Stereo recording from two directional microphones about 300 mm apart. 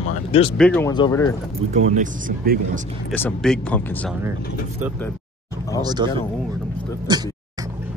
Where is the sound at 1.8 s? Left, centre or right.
Right.